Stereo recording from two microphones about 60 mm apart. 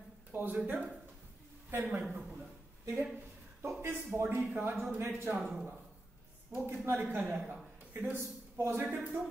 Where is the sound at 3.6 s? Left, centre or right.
Right.